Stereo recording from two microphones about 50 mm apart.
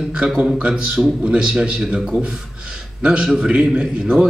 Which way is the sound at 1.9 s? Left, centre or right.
Centre.